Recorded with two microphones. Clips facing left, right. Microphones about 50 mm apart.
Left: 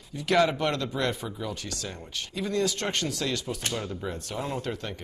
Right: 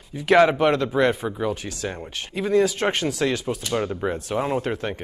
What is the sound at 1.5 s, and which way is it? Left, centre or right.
Speech, right.